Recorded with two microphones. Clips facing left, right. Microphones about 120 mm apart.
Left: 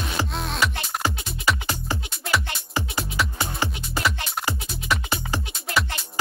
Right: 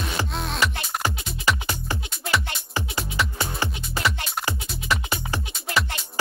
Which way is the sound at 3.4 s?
20° left (ahead or behind).